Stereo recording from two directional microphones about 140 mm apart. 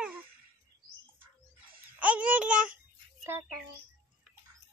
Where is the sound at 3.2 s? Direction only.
20° right (ahead or behind).